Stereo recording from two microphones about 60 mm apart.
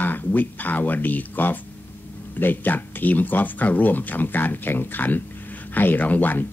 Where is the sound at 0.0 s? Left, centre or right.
Left.